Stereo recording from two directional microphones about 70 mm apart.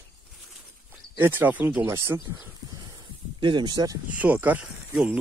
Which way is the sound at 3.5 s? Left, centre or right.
Right.